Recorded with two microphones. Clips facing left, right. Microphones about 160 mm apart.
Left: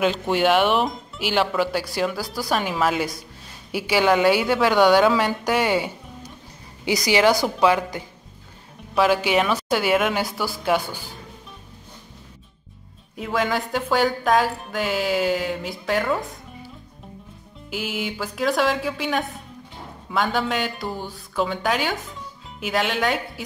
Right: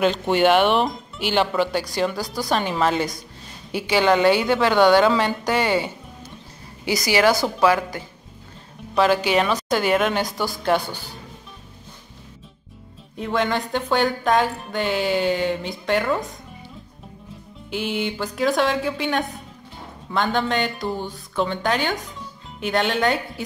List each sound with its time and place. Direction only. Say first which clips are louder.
0.0 s a woman's voice: right 2 dB; centre (ahead or behind)
13.2 s speech: right 1 dB; centre (ahead or behind)
17.6 s speech: right 3 dB; 5° left (ahead or behind)